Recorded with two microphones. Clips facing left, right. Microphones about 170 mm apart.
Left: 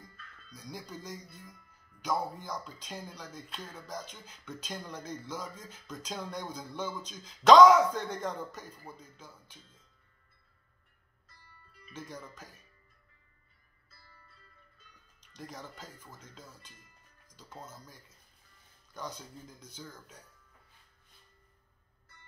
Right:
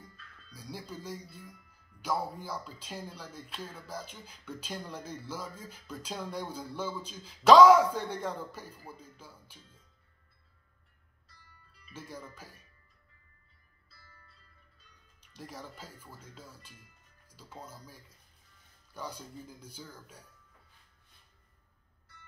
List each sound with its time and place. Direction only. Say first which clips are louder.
0.5 s speech: right 1 dB; 5° right (ahead or behind)
11.9 s speech: left 1 dB; 5° right (ahead or behind)
15.3 s speech: even; 5° right (ahead or behind)